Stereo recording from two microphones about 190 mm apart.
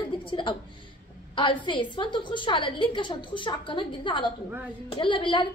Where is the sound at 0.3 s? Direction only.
25° left (ahead or behind).